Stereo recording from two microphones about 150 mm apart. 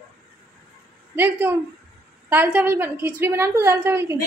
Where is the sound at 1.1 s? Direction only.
15° right (ahead or behind).